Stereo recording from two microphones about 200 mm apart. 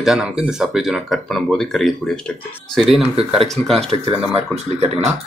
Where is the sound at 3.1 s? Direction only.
30° right (ahead or behind).